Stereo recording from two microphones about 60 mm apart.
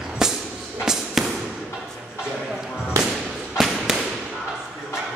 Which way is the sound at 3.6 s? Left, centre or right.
Centre.